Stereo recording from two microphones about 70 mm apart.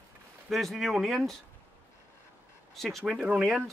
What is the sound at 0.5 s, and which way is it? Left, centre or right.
Speech, centre.